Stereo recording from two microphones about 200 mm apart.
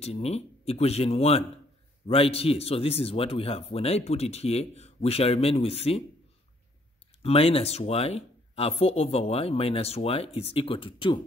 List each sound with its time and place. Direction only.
0.0 s speech: 30° left (ahead or behind)
7.2 s speech: 30° left (ahead or behind)